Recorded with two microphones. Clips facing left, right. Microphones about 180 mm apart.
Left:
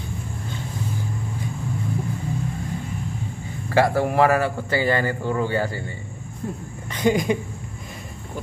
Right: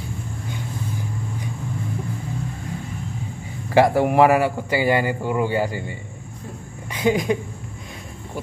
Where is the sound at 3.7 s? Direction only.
15° right (ahead or behind).